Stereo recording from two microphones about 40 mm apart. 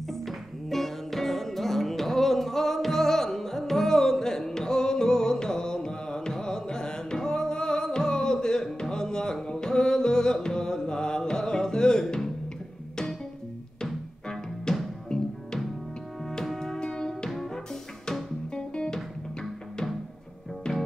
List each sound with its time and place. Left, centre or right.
0.1 s music: centre
14.7 s music: centre
16.5 s music: centre
18.5 s music: centre
20.7 s music: centre